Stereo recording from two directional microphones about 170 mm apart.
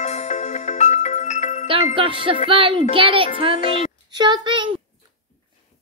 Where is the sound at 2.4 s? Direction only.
30° right (ahead or behind).